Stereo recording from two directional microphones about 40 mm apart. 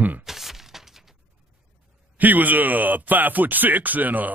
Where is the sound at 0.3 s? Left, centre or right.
Centre.